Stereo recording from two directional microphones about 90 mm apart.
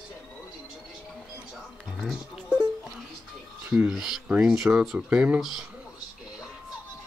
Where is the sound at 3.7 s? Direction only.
5° right (ahead or behind).